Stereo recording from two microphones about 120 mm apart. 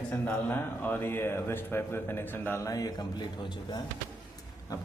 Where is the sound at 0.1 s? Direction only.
15° left (ahead or behind).